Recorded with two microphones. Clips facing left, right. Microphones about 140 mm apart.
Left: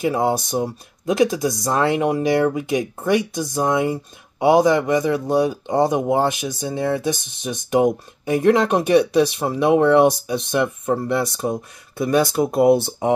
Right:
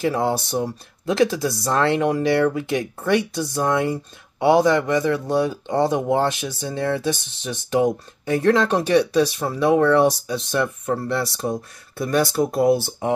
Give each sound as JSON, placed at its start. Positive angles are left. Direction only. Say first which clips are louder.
{"t": 0.0, "sound": "speech", "louder": "left 2 dB", "side_deg": 15}